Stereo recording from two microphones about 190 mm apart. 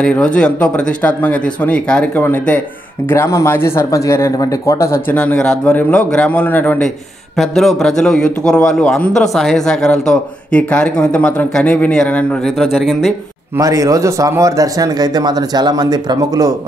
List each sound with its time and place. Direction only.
0.0 s a man's voice: 5° left (ahead or behind)
13.6 s speech: 15° right (ahead or behind)